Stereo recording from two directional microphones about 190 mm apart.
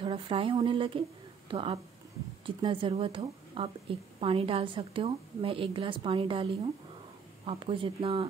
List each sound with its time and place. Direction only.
0.0 s a woman's voice: 30° right (ahead or behind)